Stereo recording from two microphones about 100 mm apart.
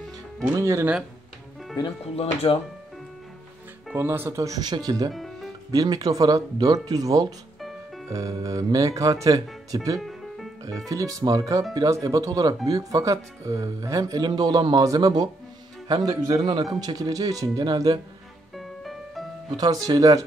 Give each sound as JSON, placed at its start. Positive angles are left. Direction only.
{"t": 0.5, "sound": "speech", "side_deg": -30}
{"t": 2.1, "sound": "speech", "side_deg": 70}
{"t": 3.9, "sound": "speech", "side_deg": -20}
{"t": 4.4, "sound": "speech", "side_deg": -40}
{"t": 5.1, "sound": "music", "side_deg": 0}
{"t": 5.7, "sound": "speech", "side_deg": -40}
{"t": 9.9, "sound": "music", "side_deg": 0}
{"t": 10.9, "sound": "speech", "side_deg": -35}
{"t": 18.6, "sound": "music", "side_deg": 0}
{"t": 19.5, "sound": "speech", "side_deg": -45}